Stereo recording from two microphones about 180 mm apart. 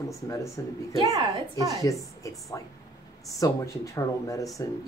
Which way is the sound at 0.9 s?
30° right (ahead or behind).